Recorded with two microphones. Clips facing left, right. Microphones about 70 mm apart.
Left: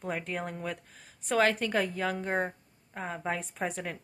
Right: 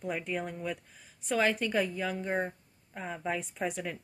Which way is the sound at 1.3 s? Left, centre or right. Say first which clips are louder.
Left 2 dB; left.